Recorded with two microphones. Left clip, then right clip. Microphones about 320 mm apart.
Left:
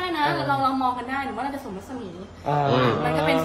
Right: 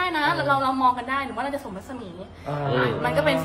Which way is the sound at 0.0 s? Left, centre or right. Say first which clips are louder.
Right 1 dB; centre.